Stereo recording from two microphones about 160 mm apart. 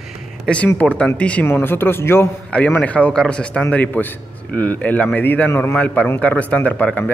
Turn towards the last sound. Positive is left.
turn(degrees=10)  # may be behind; listen again after turning